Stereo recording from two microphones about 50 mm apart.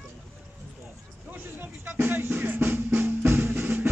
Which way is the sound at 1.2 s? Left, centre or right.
Right.